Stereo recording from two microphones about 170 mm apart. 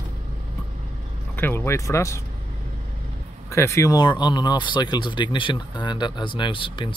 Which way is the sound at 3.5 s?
15° left (ahead or behind).